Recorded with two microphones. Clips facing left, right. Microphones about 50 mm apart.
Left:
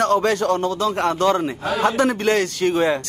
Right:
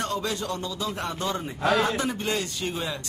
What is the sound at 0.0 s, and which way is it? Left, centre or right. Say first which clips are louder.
Speech: left 11 dB; left.